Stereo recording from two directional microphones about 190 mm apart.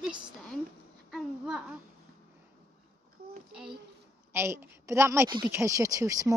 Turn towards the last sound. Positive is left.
turn(degrees=-15)  # may be behind; listen again after turning